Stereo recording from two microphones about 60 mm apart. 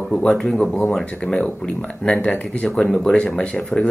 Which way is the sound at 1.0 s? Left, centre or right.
Centre.